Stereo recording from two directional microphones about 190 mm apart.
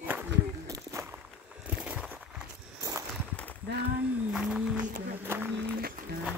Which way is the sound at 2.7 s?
15° right (ahead or behind).